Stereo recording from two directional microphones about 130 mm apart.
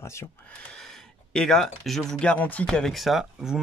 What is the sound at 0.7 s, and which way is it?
Speech, 5° left (ahead or behind).